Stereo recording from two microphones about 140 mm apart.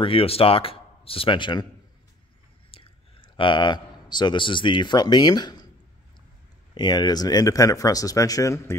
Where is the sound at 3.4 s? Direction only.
35° left (ahead or behind).